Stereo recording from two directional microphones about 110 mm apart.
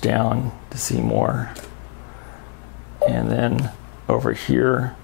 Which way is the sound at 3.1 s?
10° left (ahead or behind).